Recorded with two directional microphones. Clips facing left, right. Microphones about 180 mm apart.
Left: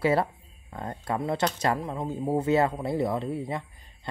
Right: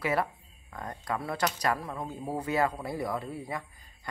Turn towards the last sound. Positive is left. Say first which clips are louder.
# left 6 dB
turn(degrees=25)  # may be behind; listen again after turning